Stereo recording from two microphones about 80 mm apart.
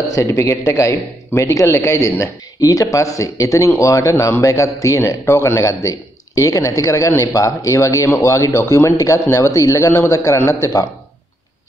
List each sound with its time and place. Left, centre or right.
0.1 s a man's voice: left